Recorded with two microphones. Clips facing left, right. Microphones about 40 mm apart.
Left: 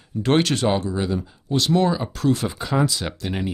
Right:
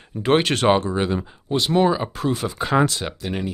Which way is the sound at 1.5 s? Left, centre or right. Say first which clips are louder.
Right 1 dB; centre.